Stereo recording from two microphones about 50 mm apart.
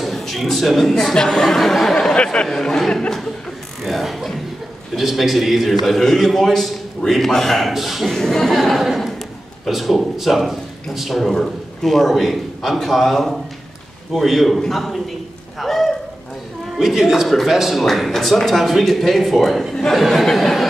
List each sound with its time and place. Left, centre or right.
0.0 s speech: centre
2.1 s speech: centre
2.4 s speech: centre
3.8 s a man's voice: centre
8.2 s a man's voice: centre
16.7 s a man's voice: centre
19.7 s a man's voice: centre